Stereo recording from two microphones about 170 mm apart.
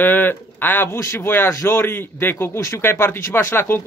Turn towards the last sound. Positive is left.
turn(degrees=15)  # may be behind; listen again after turning